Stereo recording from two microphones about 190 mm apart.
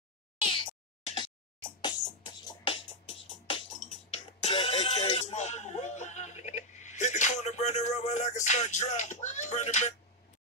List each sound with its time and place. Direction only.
0.4 s meow: 30° left (ahead or behind)
1.1 s music: 25° left (ahead or behind)
4.1 s a sound: 30° left (ahead or behind)